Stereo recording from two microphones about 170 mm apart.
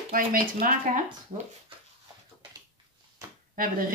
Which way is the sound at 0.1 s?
55° right (ahead or behind).